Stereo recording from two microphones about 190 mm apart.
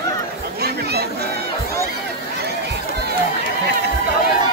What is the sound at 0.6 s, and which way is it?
Chatter, 55° right (ahead or behind).